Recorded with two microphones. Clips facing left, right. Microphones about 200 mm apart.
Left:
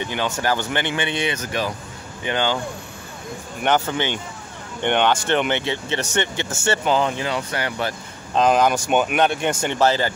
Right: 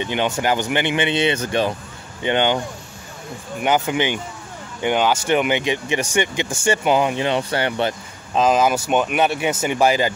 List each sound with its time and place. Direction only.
0.0 s speech: 20° right (ahead or behind)
3.6 s speech: 10° right (ahead or behind)
7.2 s speech: 25° right (ahead or behind)
8.4 s speech: 5° right (ahead or behind)